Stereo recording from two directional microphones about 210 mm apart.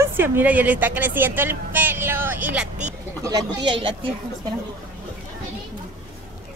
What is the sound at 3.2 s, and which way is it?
Speech, 20° right (ahead or behind).